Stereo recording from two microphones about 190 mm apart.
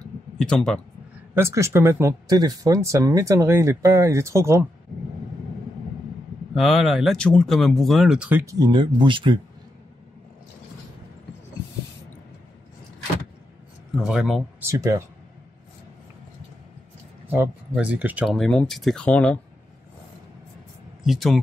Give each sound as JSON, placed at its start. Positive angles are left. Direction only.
{"t": 0.4, "sound": "speech", "side_deg": 5}
{"t": 1.3, "sound": "speech", "side_deg": -15}
{"t": 6.5, "sound": "speech", "side_deg": 0}
{"t": 8.5, "sound": "speech", "side_deg": -25}
{"t": 13.9, "sound": "speech", "side_deg": 0}
{"t": 14.7, "sound": "speech", "side_deg": -15}
{"t": 17.3, "sound": "speech", "side_deg": -10}
{"t": 21.0, "sound": "speech", "side_deg": 0}